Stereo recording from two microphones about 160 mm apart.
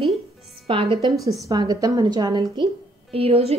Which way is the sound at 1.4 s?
20° right (ahead or behind).